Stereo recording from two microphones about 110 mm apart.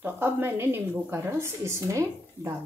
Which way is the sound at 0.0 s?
20° right (ahead or behind).